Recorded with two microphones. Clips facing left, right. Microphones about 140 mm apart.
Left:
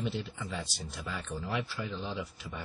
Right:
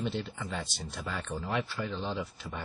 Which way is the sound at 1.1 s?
50° right (ahead or behind).